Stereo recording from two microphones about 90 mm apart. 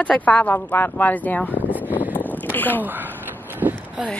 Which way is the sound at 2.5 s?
20° left (ahead or behind).